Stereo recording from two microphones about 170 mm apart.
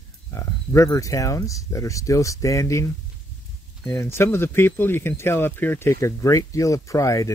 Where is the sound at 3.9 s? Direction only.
15° left (ahead or behind).